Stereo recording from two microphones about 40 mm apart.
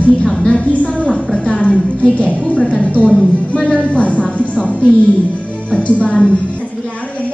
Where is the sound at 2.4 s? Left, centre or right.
Left.